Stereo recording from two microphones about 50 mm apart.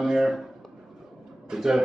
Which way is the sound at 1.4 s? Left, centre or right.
Centre.